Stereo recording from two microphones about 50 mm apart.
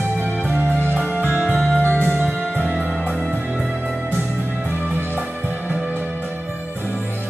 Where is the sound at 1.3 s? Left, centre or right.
Right.